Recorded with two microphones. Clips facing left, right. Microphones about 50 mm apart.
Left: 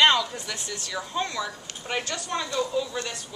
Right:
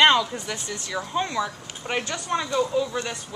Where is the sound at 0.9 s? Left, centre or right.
Centre.